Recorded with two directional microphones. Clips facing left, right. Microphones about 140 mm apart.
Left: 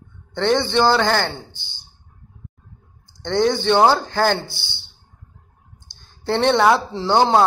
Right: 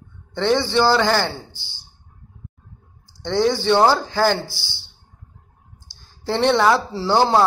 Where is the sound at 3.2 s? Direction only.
5° right (ahead or behind).